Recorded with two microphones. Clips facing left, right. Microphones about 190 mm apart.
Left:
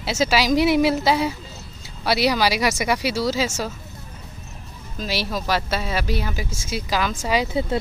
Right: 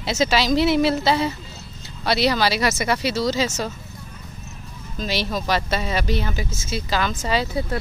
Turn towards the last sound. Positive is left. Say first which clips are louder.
# left 3 dB
turn(degrees=25)  # may be behind; listen again after turning